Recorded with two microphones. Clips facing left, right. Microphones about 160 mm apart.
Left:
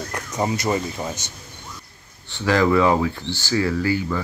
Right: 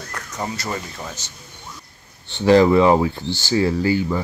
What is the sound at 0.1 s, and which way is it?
Speech, 20° left (ahead or behind).